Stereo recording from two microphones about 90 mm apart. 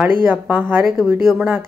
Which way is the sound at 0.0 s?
20° right (ahead or behind).